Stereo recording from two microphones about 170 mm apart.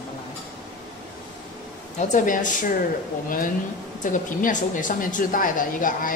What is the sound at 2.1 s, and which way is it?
Speech, 50° left (ahead or behind).